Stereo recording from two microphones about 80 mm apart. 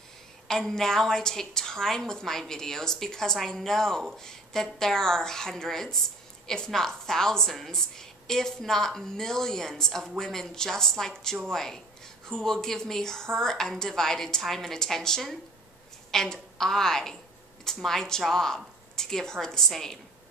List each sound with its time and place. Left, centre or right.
0.5 s a woman's voice: centre